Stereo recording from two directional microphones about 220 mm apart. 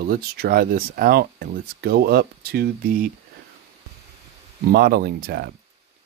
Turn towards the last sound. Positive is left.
turn(degrees=-45)  # may be behind; listen again after turning